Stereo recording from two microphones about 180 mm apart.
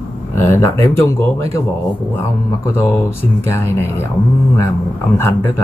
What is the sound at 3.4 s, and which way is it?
Speech, 15° left (ahead or behind).